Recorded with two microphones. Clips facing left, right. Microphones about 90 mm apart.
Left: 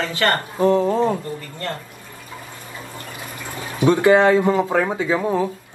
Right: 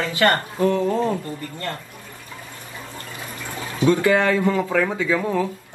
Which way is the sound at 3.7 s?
20° left (ahead or behind).